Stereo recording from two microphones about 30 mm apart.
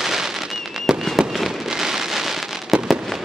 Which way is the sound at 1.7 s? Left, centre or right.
Centre.